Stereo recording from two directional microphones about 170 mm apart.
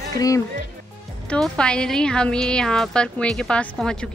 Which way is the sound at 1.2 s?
5° left (ahead or behind).